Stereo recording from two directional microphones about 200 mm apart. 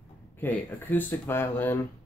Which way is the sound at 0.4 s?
10° left (ahead or behind).